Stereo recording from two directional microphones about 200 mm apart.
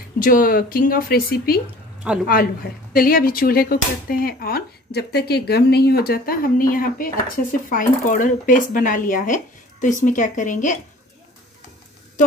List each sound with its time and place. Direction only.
0.2 s speech: 45° left (ahead or behind)
2.0 s a woman's voice: 5° right (ahead or behind)
2.9 s speech: 45° left (ahead or behind)